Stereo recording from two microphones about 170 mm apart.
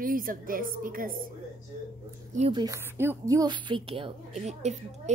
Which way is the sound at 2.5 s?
25° right (ahead or behind).